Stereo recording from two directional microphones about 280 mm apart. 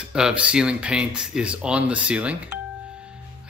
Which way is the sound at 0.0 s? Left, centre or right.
Centre.